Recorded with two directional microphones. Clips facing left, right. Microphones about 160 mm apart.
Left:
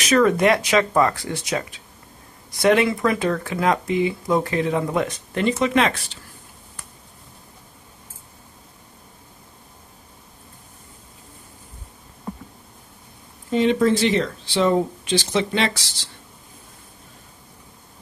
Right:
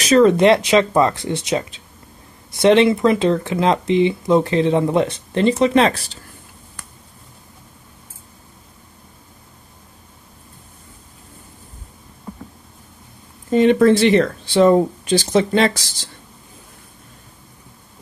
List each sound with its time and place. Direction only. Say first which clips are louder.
0.0 s speech: right 5 dB; 25° right (ahead or behind)
13.5 s speech: right 5 dB; 55° right (ahead or behind)